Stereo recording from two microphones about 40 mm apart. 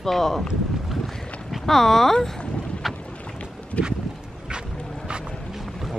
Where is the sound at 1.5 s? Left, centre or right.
Centre.